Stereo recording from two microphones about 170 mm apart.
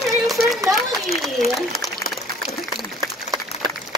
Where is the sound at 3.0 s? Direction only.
25° right (ahead or behind).